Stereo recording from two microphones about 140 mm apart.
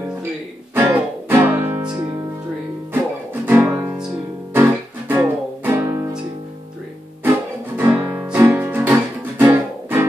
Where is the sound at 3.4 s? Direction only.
15° right (ahead or behind).